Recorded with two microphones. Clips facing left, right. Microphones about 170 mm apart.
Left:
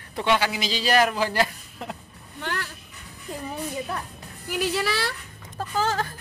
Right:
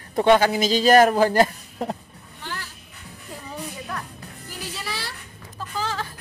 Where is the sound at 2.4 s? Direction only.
60° left (ahead or behind).